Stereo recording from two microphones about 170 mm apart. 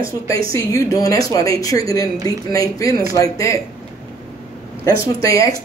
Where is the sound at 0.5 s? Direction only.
20° left (ahead or behind).